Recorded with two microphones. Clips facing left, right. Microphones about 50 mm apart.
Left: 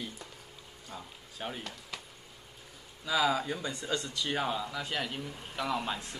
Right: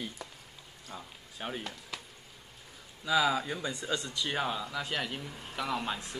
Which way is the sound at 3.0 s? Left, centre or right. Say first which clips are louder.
Right 1 dB; centre.